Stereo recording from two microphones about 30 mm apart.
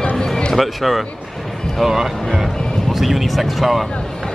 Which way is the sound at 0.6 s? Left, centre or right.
Centre.